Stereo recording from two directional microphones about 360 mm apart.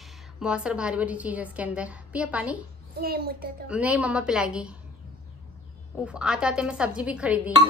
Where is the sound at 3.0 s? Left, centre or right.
Right.